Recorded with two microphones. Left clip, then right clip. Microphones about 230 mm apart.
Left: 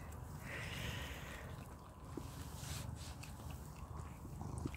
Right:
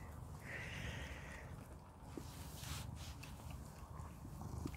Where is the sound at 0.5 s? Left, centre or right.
Centre.